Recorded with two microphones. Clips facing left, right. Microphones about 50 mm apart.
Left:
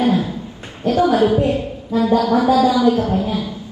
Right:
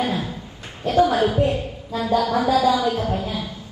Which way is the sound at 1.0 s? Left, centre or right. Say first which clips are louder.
Left 4 dB; left.